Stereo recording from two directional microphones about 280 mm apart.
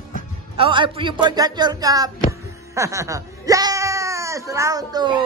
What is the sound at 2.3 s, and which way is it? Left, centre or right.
Music, centre.